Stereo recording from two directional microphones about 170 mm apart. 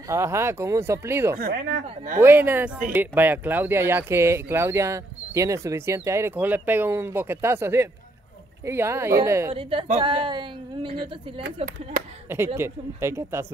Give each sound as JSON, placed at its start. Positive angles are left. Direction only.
{"t": 0.1, "sound": "speech", "side_deg": -15}
{"t": 1.4, "sound": "speech", "side_deg": -90}
{"t": 2.1, "sound": "speech", "side_deg": -10}
{"t": 9.5, "sound": "a woman's voice", "side_deg": -30}
{"t": 11.6, "sound": "speech", "side_deg": -50}
{"t": 12.5, "sound": "speech", "side_deg": -15}